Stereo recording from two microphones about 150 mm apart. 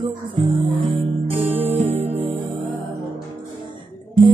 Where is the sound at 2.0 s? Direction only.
40° right (ahead or behind).